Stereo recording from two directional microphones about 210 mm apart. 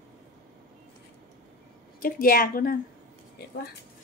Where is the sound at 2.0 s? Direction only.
40° left (ahead or behind).